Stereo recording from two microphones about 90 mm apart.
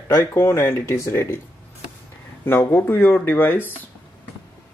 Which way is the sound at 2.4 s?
20° left (ahead or behind).